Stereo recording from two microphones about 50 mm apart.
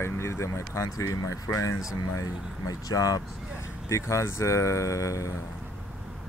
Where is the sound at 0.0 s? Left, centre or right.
Left.